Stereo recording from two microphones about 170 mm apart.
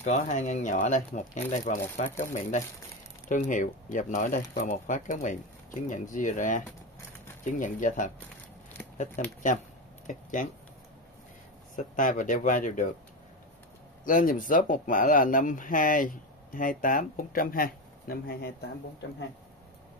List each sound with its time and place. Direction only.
0.0 s speech: 45° left (ahead or behind)
11.7 s speech: 50° left (ahead or behind)
14.0 s speech: 50° left (ahead or behind)